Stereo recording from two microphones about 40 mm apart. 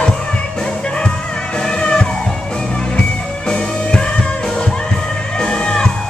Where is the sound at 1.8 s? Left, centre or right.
Centre.